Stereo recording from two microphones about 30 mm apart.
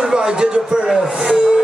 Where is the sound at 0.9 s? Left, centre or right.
Centre.